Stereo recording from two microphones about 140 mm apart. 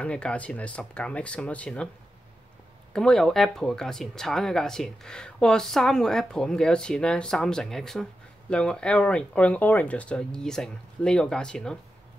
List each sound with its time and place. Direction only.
0.0 s speech: 5° left (ahead or behind)
2.9 s speech: 5° left (ahead or behind)